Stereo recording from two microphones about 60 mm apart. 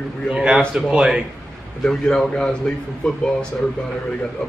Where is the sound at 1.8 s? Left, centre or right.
Centre.